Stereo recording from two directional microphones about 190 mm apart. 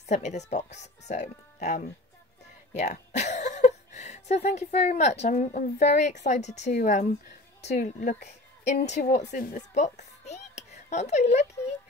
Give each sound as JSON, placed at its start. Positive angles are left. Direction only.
{"t": 0.0, "sound": "a woman's voice", "side_deg": 40}